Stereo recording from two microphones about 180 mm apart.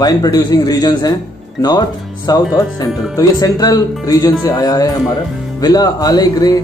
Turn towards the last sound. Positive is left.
turn(degrees=20)  # may be behind; listen again after turning